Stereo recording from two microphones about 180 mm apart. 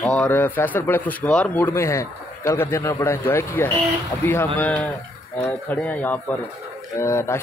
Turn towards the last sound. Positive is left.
turn(degrees=15)  # may be behind; listen again after turning